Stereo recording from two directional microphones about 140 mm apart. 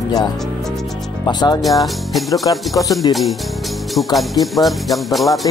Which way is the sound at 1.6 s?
Centre (ahead or behind).